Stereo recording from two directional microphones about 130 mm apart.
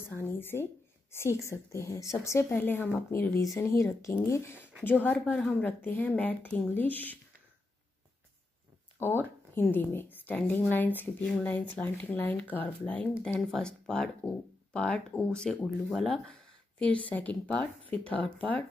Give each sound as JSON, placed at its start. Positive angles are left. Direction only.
{"t": 0.1, "sound": "a sound", "side_deg": 15}
{"t": 1.4, "sound": "a woman's voice", "side_deg": 20}
{"t": 9.0, "sound": "a woman's voice", "side_deg": 15}